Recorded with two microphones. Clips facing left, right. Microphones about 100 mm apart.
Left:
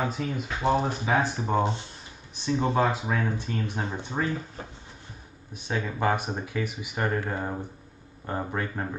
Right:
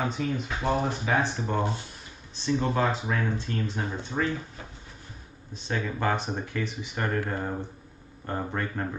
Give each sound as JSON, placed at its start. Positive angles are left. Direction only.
{"t": 0.0, "sound": "speech", "side_deg": 5}
{"t": 5.5, "sound": "speech", "side_deg": 10}